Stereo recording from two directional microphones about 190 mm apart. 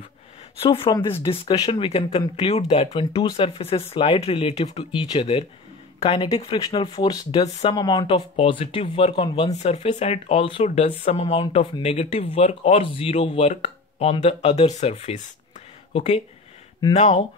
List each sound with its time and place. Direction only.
0.6 s speech: 25° left (ahead or behind)